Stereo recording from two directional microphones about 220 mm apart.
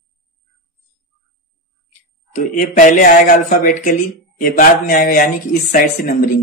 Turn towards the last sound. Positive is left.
turn(degrees=40)  # may be behind; listen again after turning